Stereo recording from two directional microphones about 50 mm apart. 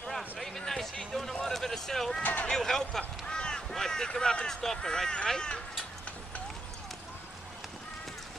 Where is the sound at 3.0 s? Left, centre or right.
Centre.